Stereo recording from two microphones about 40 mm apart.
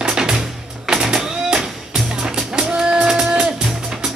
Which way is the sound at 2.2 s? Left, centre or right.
Centre.